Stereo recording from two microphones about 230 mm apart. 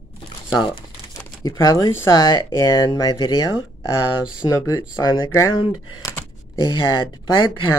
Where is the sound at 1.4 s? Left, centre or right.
Centre.